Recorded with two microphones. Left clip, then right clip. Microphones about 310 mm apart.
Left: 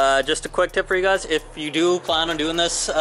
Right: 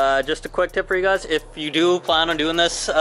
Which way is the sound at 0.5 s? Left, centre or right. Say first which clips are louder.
Left 1 dB; centre.